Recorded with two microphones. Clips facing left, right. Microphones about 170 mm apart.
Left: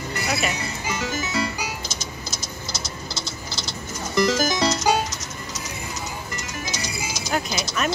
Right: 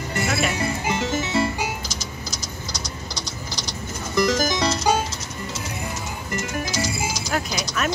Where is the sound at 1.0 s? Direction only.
25° right (ahead or behind).